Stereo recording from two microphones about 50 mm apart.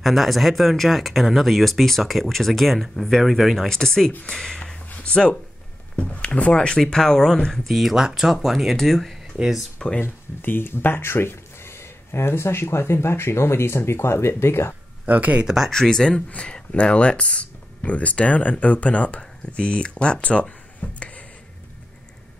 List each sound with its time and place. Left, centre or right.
0.0 s speech: centre
3.6 s speech: centre
6.8 s speech: centre
7.6 s speech: centre
7.9 s speech: centre
10.0 s speech: left
15.0 s speech: right
15.4 s speech: centre
15.7 s speech: centre
16.3 s speech: left